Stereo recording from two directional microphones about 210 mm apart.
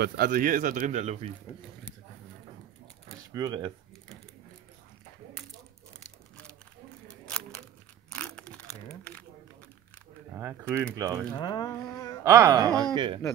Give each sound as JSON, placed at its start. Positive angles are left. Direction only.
{"t": 0.0, "sound": "speech", "side_deg": -40}
{"t": 3.3, "sound": "speech", "side_deg": -20}
{"t": 5.9, "sound": "a sound", "side_deg": 5}
{"t": 10.3, "sound": "speech", "side_deg": -10}
{"t": 11.3, "sound": "a sound", "side_deg": 20}
{"t": 12.3, "sound": "speech", "side_deg": -15}